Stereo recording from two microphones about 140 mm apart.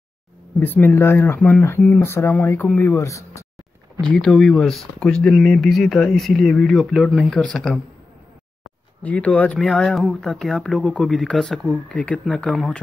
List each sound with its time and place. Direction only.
0.6 s speech: 15° left (ahead or behind)
4.1 s speech: 5° left (ahead or behind)
9.0 s speech: 10° left (ahead or behind)